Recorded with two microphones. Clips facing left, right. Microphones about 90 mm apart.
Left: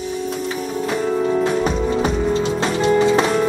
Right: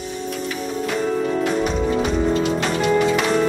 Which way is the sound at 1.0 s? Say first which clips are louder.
Left 3 dB; 10° left (ahead or behind).